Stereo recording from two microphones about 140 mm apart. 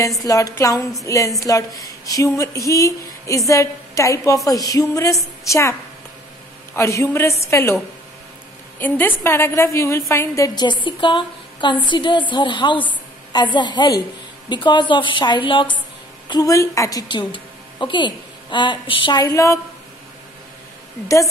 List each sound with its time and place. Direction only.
0.2 s a woman's voice: 25° left (ahead or behind)
16.3 s speech: 25° left (ahead or behind)
17.1 s a woman's voice: 35° left (ahead or behind)